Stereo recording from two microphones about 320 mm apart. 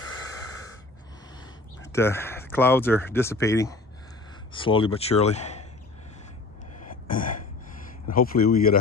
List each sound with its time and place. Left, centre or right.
1.9 s speech: centre
6.8 s throat clearing: left
8.1 s speech: left